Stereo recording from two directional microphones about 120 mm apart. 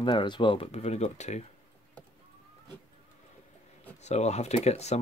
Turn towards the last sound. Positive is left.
turn(degrees=65)  # may be behind; listen again after turning